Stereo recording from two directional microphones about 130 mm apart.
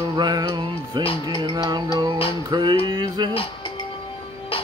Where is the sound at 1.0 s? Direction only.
45° left (ahead or behind).